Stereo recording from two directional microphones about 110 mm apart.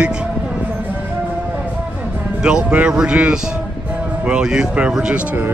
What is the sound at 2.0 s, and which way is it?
A man's voice, 10° right (ahead or behind).